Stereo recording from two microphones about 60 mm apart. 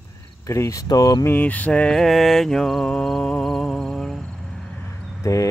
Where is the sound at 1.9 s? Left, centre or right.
Centre.